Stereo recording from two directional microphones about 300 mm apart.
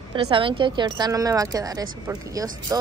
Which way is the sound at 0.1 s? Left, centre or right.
Centre.